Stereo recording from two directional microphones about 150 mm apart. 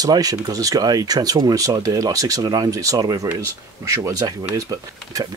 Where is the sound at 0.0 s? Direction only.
25° right (ahead or behind).